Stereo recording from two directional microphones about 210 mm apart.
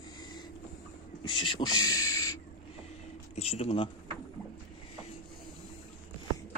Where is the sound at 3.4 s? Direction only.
30° left (ahead or behind).